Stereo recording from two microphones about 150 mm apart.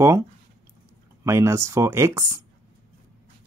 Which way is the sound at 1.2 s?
20° right (ahead or behind).